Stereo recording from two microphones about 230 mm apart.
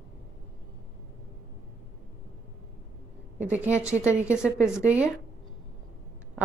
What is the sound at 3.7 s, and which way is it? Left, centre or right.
A woman's voice, centre.